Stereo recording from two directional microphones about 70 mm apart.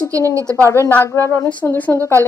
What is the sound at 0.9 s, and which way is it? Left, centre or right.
A woman's voice, left.